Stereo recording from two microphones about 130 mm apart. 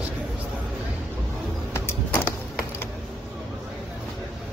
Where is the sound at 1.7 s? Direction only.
20° left (ahead or behind).